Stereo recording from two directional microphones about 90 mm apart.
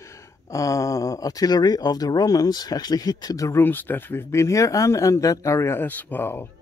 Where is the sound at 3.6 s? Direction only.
20° left (ahead or behind).